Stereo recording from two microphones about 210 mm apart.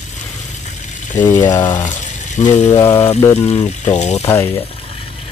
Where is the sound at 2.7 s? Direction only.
15° left (ahead or behind).